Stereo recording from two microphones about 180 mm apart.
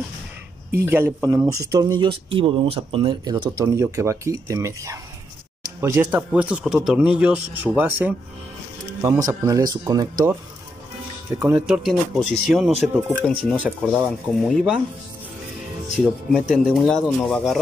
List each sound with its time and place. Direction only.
0.8 s speech: 15° right (ahead or behind)
11.3 s speech: 10° right (ahead or behind)
16.3 s speech: centre (ahead or behind)